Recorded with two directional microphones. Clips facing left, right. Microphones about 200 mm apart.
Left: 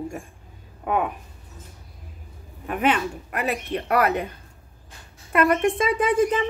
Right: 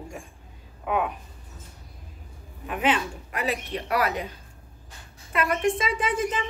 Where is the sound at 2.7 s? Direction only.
55° left (ahead or behind).